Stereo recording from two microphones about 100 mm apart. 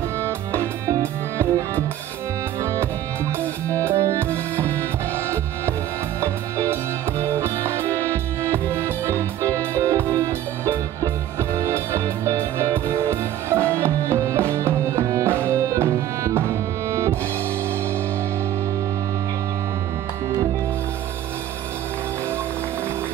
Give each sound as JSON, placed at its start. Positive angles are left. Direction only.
{"t": 0.2, "sound": "music", "side_deg": -25}
{"t": 2.6, "sound": "music", "side_deg": -30}
{"t": 4.6, "sound": "music", "side_deg": 15}
{"t": 6.2, "sound": "music", "side_deg": -25}